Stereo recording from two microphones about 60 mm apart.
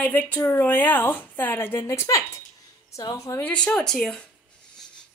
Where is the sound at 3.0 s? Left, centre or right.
Left.